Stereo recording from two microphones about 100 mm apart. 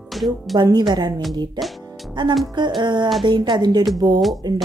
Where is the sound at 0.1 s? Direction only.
Centre (ahead or behind).